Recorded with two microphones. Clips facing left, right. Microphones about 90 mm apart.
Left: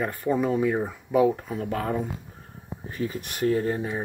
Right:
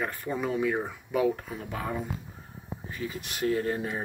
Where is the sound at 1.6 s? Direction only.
50° left (ahead or behind).